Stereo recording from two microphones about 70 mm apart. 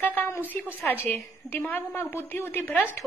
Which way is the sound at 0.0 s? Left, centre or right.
Left.